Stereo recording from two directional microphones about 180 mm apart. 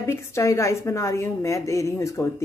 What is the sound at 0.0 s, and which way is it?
A woman's voice, 15° left (ahead or behind).